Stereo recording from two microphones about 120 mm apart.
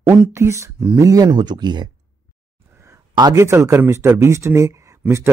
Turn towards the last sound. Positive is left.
turn(degrees=-25)  # may be behind; listen again after turning